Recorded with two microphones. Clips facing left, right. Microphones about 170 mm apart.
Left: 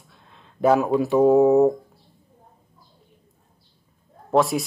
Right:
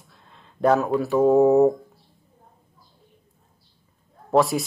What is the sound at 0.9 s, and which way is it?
Speech, 20° left (ahead or behind).